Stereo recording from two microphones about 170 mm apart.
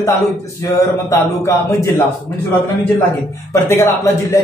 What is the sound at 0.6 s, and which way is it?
A man's voice, 20° left (ahead or behind).